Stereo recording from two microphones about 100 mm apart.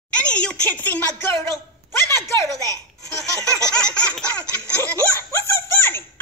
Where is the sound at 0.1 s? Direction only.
10° left (ahead or behind).